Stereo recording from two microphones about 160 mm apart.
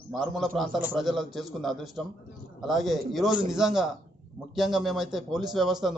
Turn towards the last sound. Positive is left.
turn(degrees=0)  # may be behind; listen again after turning